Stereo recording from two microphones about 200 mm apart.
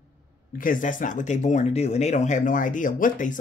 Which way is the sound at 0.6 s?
40° left (ahead or behind).